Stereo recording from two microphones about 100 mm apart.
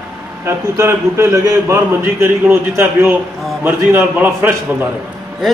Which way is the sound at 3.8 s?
25° right (ahead or behind).